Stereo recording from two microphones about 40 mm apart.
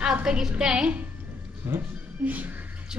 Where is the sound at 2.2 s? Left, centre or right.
Right.